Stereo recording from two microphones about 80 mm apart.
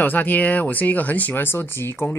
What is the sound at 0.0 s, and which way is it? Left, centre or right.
Speech, left.